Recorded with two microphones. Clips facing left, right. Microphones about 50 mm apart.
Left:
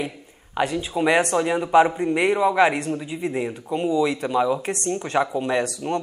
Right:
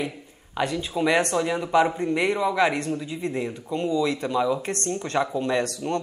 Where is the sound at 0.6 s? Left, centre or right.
Centre.